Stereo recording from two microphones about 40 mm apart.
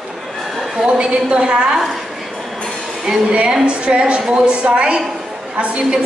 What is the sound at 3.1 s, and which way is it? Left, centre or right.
Speech, centre.